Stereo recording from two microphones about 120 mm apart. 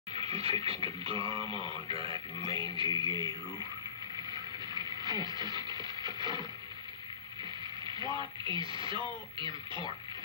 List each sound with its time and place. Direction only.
0.1 s speech: 55° right (ahead or behind); by 3.6 s 35° right (ahead or behind)
4.3 s a sound: 35° right (ahead or behind)
7.8 s speech: 40° right (ahead or behind)